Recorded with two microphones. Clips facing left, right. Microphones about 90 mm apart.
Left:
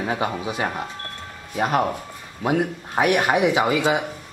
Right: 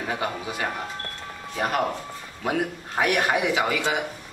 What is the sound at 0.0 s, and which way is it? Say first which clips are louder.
Speech: left 4 dB; 20° left (ahead or behind).